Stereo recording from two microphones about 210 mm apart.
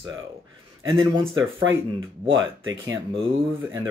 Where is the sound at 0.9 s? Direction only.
20° right (ahead or behind).